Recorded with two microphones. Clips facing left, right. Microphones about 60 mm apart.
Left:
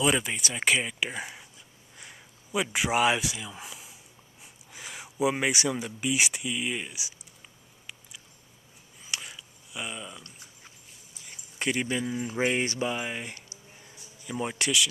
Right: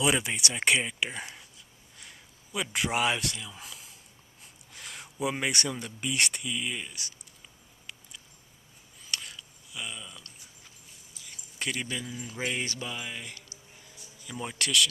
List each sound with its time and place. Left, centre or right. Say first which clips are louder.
0.0 s speech: left 1 dB; centre
9.0 s a sound: left 1 dB; centre
11.2 s speech: left 5 dB; centre
13.9 s speech: left 6 dB; centre